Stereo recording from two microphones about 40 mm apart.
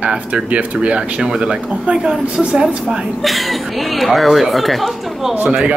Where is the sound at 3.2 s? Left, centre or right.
Centre.